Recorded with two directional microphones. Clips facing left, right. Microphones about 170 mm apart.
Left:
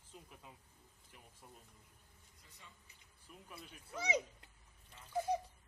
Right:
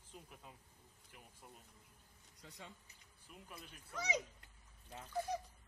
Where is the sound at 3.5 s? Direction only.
5° left (ahead or behind).